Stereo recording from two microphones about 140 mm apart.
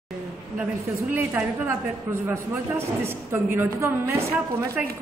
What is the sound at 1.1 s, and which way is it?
A woman's voice, 15° right (ahead or behind).